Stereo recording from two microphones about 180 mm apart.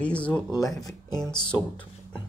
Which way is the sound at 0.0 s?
5° left (ahead or behind).